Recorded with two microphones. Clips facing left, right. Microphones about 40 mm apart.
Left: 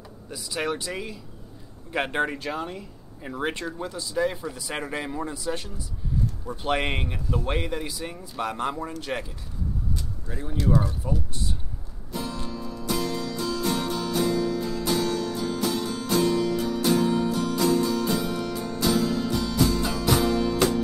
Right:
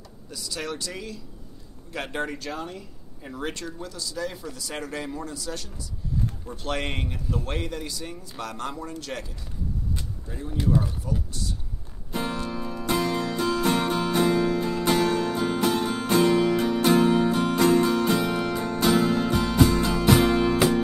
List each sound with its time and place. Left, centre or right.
0.3 s speech: centre
10.3 s speech: centre
12.1 s music: right